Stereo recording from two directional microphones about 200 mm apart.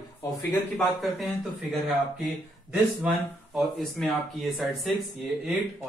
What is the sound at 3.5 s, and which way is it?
Speech, centre (ahead or behind).